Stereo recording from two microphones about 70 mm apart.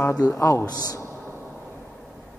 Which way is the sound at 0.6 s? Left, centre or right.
Left.